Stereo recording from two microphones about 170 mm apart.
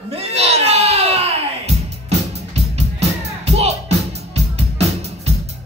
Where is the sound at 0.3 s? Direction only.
40° right (ahead or behind).